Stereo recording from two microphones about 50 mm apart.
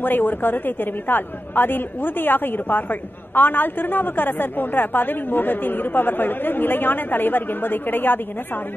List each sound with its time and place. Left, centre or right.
0.0 s a woman's voice: left